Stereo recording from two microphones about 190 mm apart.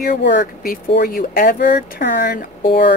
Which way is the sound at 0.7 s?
50° left (ahead or behind).